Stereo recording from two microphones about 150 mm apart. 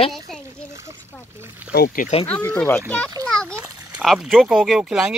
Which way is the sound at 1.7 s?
75° left (ahead or behind).